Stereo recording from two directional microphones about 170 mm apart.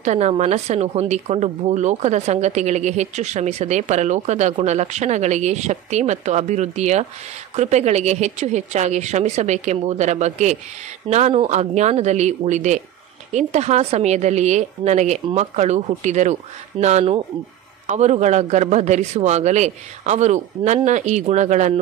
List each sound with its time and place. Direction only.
0.0 s speech: 45° right (ahead or behind)